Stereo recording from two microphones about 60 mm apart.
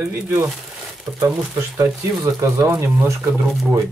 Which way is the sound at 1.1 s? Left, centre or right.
Right.